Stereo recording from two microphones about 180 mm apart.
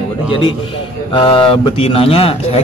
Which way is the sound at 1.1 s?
30° left (ahead or behind).